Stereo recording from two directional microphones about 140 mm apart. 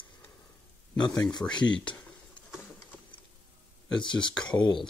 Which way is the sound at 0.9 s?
30° left (ahead or behind).